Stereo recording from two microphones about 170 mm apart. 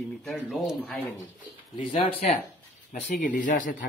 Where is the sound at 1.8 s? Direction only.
30° left (ahead or behind).